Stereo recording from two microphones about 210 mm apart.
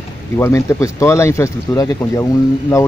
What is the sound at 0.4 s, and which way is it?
Speech, 15° left (ahead or behind).